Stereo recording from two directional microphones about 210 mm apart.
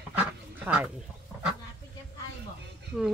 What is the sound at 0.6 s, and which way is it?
Speech, 5° right (ahead or behind).